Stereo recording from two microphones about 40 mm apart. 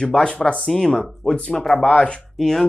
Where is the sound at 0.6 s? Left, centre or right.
Centre.